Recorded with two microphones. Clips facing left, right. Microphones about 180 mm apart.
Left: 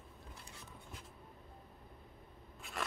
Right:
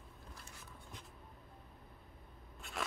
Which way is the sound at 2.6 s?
Centre (ahead or behind).